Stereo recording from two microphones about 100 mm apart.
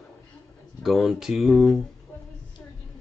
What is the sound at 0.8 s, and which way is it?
Speech, centre (ahead or behind).